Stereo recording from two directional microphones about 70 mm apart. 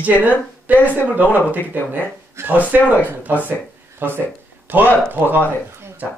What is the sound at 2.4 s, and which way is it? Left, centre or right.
Speech, right.